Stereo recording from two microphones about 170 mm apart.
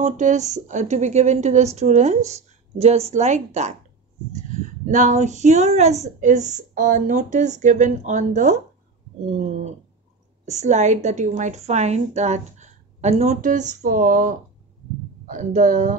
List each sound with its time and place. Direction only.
0.0 s speech: 45° right (ahead or behind)
10.4 s speech: 40° right (ahead or behind)